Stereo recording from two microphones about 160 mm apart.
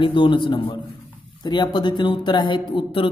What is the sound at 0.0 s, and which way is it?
Speech, 30° left (ahead or behind).